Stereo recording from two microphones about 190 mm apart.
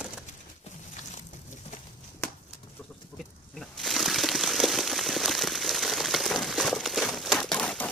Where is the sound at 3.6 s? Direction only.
Centre (ahead or behind).